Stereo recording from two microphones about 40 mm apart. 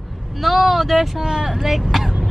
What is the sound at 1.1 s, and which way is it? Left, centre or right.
Speech, centre.